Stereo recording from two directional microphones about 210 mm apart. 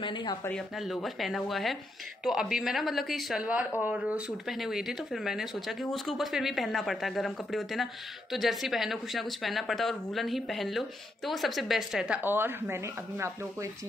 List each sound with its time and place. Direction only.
0.0 s speech: 20° left (ahead or behind)
0.5 s speech: centre (ahead or behind)